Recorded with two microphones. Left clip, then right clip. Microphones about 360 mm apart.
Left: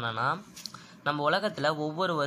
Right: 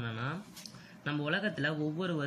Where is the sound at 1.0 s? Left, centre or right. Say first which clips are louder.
Left 7 dB; centre.